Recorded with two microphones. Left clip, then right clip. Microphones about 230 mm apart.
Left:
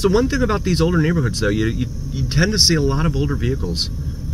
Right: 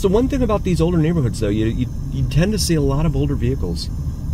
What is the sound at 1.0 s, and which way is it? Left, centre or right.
Speech, centre.